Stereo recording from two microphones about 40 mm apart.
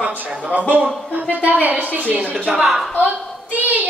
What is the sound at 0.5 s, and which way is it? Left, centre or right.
A man's voice, right.